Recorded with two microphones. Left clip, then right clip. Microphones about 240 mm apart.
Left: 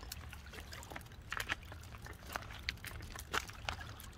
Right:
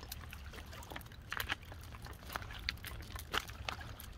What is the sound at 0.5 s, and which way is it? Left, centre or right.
Pour, left.